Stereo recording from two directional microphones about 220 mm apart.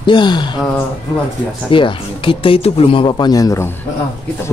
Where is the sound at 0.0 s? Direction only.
20° left (ahead or behind).